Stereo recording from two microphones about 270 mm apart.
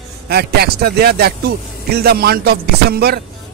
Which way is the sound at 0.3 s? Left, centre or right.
Right.